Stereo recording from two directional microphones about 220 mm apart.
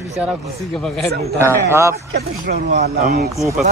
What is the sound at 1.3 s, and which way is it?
Speech, 10° right (ahead or behind).